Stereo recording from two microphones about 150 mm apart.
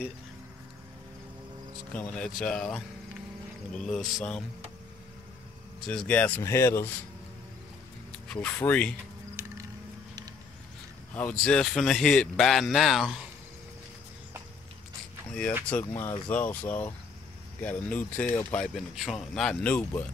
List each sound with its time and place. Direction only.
2.0 s a man's voice: 5° left (ahead or behind)
3.8 s a man's voice: 5° left (ahead or behind)
5.9 s speech: 10° left (ahead or behind)
8.3 s speech: 10° left (ahead or behind)
9.4 s music: 20° right (ahead or behind)
11.1 s a man's voice: 10° left (ahead or behind)
15.9 s speech: 20° left (ahead or behind)
16.3 s speech: 10° left (ahead or behind)